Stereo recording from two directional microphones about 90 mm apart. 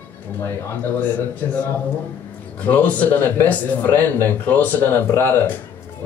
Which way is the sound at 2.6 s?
15° left (ahead or behind).